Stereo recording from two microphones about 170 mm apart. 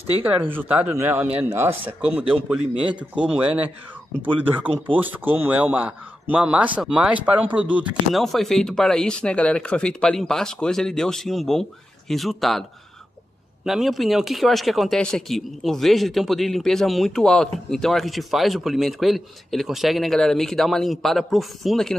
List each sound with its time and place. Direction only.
0.2 s speech: 10° right (ahead or behind)
2.7 s speech: 30° right (ahead or behind)
3.2 s speech: 5° right (ahead or behind)
13.7 s speech: centre (ahead or behind)